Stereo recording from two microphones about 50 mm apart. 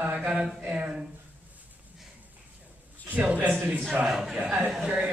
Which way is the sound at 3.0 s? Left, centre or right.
Right.